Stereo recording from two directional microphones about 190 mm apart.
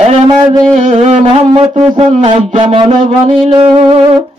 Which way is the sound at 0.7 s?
35° right (ahead or behind).